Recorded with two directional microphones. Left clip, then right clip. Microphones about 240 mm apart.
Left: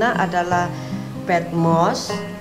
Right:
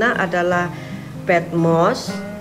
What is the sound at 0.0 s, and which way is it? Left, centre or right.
Speech, centre.